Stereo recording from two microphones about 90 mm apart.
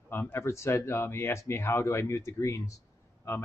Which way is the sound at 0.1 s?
25° left (ahead or behind).